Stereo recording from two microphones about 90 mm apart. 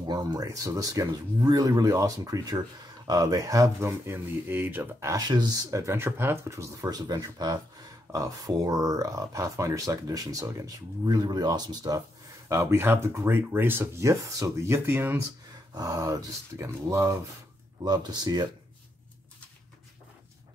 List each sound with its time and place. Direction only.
0.0 s speech: 50° right (ahead or behind); by 4.8 s 20° right (ahead or behind)
5.3 s speech: 50° right (ahead or behind); by 7.0 s 35° right (ahead or behind)
7.0 s speech: 50° right (ahead or behind)
12.4 s speech: 35° right (ahead or behind)
15.7 s speech: 45° right (ahead or behind)
17.8 s speech: 50° right (ahead or behind)